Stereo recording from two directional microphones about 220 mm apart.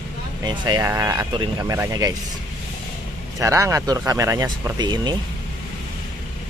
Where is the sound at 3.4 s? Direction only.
15° right (ahead or behind).